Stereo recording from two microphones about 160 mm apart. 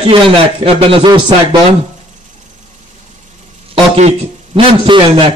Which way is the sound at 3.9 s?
40° right (ahead or behind).